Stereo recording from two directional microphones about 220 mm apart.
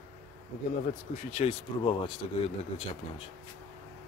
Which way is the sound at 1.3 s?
30° left (ahead or behind).